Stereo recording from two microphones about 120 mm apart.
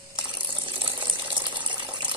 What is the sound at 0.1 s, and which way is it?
Water, 40° right (ahead or behind).